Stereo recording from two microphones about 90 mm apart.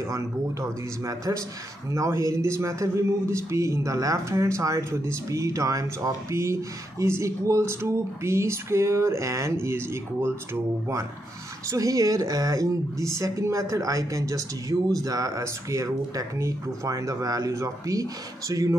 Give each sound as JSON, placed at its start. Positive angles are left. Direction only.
{"t": 0.1, "sound": "speech", "side_deg": -35}